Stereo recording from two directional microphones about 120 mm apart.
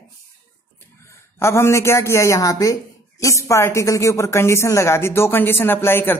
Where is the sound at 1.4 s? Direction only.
25° left (ahead or behind).